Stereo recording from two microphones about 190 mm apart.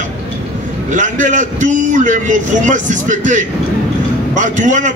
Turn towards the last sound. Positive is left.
turn(degrees=-40)  # may be behind; listen again after turning